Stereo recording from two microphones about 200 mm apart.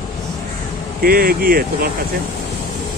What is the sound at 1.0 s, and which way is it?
Speech, 50° right (ahead or behind).